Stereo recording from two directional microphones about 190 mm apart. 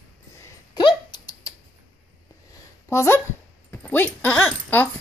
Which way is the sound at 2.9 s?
15° left (ahead or behind).